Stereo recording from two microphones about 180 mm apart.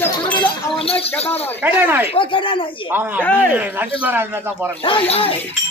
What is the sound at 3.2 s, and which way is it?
Speech, 10° left (ahead or behind).